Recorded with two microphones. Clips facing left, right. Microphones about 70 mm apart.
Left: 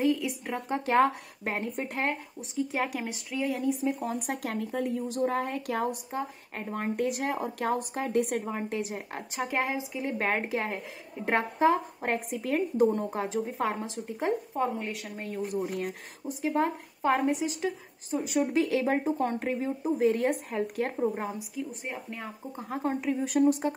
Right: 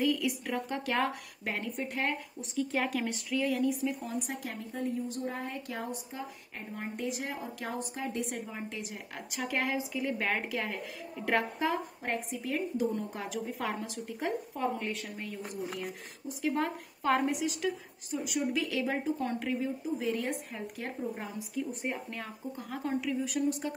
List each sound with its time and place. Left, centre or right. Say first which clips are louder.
0.0 s speech: left 3 dB; left
2.5 s speech: left 1 dB; centre
4.0 s a woman's voice: left 5 dB; left
12.0 s a woman's voice: left 4 dB; left
15.8 s a woman's voice: left 5 dB; left
16.4 s a woman's voice: left 4 dB; left
21.1 s a woman's voice: left 6 dB; left
21.5 s speech: right 1 dB; centre
22.2 s a woman's voice: left 1 dB; left